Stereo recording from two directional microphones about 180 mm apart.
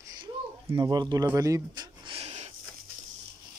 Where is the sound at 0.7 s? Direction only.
20° right (ahead or behind).